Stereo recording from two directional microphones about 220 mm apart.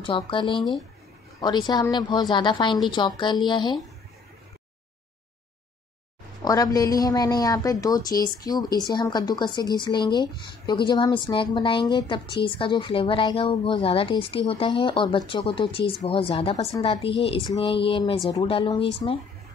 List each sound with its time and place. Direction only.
0.0 s a woman's voice: 25° left (ahead or behind)
6.4 s a woman's voice: 15° left (ahead or behind)